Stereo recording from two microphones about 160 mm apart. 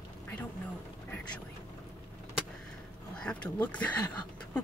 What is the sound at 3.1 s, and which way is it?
Speech, 5° left (ahead or behind).